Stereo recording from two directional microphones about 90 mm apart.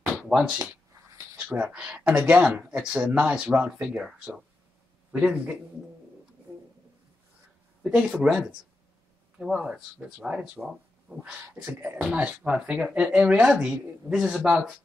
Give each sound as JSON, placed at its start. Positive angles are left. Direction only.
{"t": 0.3, "sound": "speech", "side_deg": -10}
{"t": 1.6, "sound": "speech", "side_deg": -10}
{"t": 7.8, "sound": "speech", "side_deg": -5}